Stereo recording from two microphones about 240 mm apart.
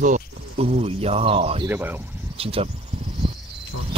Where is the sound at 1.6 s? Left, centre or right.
Centre.